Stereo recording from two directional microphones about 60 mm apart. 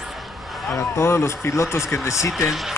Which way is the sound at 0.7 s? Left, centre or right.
Left.